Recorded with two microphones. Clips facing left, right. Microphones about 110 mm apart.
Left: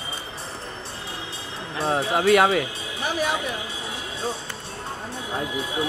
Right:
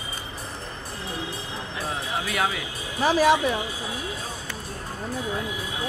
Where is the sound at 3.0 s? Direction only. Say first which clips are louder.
Right 7 dB; 90° right.